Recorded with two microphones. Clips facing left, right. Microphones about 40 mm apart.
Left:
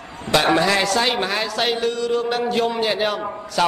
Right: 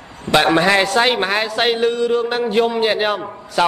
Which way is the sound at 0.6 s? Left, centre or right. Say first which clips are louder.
Right 4 dB; right.